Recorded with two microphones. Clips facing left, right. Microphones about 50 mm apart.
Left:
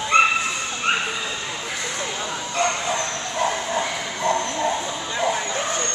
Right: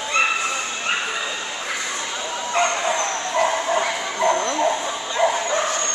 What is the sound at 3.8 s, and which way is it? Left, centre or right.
Bow-wow, right.